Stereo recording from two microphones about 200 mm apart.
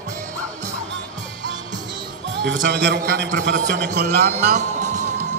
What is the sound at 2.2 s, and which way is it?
Music, 65° right (ahead or behind).